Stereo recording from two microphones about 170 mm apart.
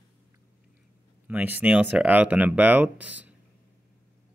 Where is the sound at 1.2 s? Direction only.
10° right (ahead or behind).